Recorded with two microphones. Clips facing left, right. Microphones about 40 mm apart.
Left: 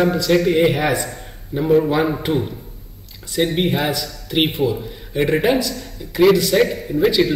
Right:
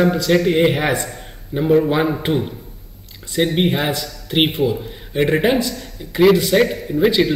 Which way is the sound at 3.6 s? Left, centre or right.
Centre.